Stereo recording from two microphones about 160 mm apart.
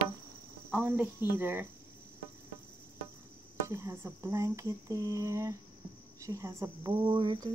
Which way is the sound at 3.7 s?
15° right (ahead or behind).